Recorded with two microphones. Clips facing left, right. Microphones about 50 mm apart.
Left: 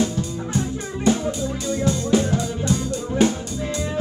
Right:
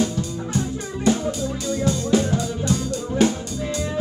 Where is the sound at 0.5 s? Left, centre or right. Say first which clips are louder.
Even; left.